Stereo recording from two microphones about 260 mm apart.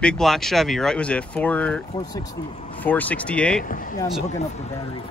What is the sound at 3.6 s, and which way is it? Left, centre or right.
Speech, left.